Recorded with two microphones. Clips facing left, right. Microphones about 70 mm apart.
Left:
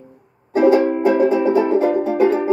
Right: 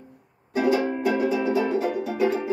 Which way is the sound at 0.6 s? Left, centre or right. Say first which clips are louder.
Left 9 dB; left.